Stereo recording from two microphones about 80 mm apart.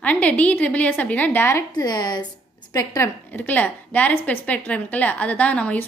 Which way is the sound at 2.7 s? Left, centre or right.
Left.